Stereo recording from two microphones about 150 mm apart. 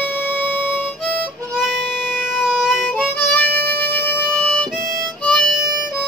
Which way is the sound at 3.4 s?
85° right.